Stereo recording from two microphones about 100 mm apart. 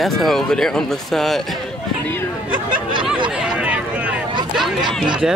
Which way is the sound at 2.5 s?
55° right (ahead or behind).